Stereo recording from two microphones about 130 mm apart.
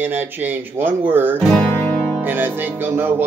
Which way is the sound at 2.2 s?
15° right (ahead or behind).